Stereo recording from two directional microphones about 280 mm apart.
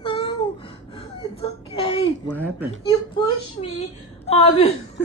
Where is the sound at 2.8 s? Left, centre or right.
Centre.